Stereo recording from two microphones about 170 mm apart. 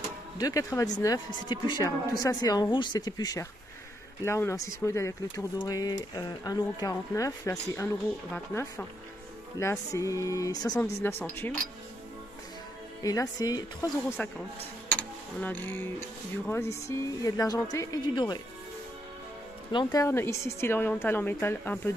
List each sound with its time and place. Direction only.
0.4 s speech: 20° left (ahead or behind)
9.6 s speech: 15° left (ahead or behind)
13.0 s speech: 20° left (ahead or behind)
14.2 s speech: 10° left (ahead or behind); by 18.4 s 25° left (ahead or behind)
19.7 s speech: 25° left (ahead or behind)